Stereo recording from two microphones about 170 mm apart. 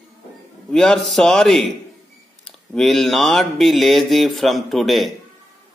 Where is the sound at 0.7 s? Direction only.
5° left (ahead or behind).